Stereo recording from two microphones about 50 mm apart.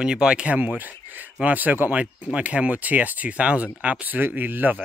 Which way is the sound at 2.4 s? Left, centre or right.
Right.